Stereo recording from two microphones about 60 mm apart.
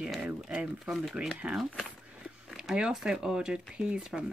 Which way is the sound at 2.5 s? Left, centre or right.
Centre.